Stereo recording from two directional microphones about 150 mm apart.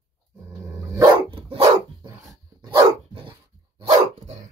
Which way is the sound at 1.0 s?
35° right (ahead or behind).